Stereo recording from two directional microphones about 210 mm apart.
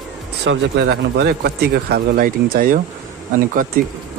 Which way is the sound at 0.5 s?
55° right (ahead or behind).